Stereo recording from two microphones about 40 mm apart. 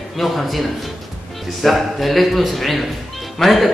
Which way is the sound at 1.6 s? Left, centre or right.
Centre.